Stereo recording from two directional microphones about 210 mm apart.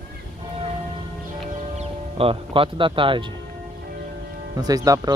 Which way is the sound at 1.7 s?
25° right (ahead or behind).